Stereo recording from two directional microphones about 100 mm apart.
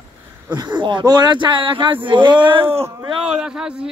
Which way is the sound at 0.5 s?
45° right (ahead or behind).